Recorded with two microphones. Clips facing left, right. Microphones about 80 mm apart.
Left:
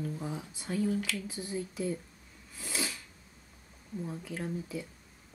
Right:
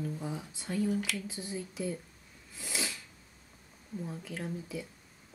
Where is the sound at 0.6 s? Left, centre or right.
Centre.